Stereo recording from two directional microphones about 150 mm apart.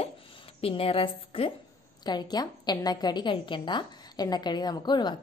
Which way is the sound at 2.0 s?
25° left (ahead or behind).